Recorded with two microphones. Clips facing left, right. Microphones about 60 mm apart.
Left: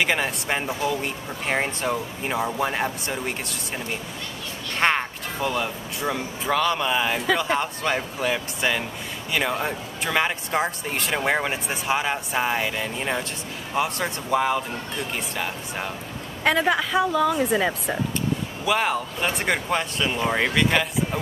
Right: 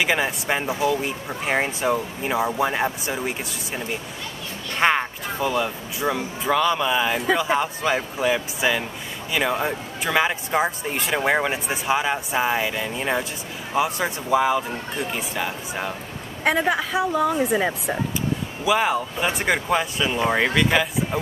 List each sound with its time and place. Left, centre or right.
0.0 s a woman's voice: centre
17.1 s a woman's voice: centre
17.4 s speech: centre